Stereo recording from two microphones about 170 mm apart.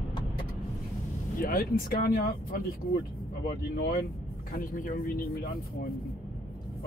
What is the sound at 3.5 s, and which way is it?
Speech, 70° left (ahead or behind).